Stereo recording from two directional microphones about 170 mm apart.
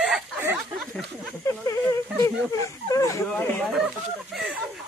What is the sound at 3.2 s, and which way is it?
Speech, 5° left (ahead or behind).